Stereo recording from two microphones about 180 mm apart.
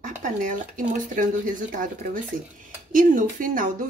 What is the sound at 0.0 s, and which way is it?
Speech, 45° right (ahead or behind).